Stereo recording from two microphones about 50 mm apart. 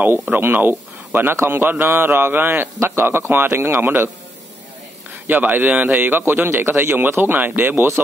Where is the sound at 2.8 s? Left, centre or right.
Right.